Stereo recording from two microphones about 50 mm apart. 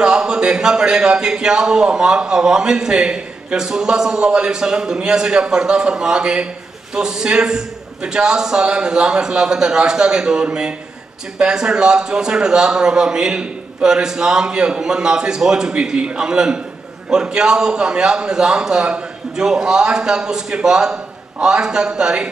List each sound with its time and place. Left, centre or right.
0.0 s a man's voice: centre
15.7 s a man's voice: right